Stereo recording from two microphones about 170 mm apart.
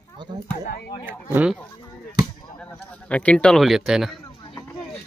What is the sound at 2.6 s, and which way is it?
A man's voice, 5° left (ahead or behind).